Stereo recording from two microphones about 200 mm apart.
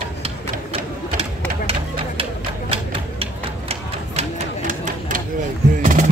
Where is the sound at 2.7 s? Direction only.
30° right (ahead or behind).